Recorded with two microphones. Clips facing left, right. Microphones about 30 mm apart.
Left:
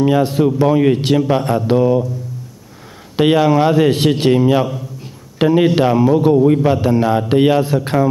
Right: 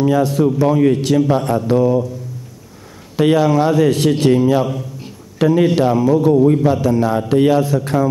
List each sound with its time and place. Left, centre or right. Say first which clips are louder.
0.0 s a man's voice: left 1 dB; left
3.2 s a man's voice: left 1 dB; left
6.6 s a man's voice: left 1 dB; left